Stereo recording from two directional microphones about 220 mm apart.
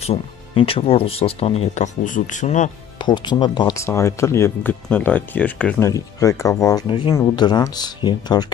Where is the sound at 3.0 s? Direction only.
20° left (ahead or behind).